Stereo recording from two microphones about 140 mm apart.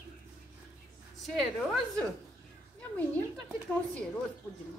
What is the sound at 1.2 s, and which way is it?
Speech, centre (ahead or behind).